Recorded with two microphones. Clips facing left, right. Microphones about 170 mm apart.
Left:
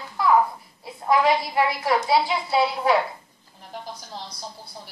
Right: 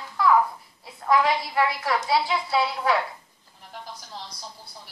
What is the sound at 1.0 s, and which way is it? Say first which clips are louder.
A woman's voice: left 2 dB; 15° left (ahead or behind).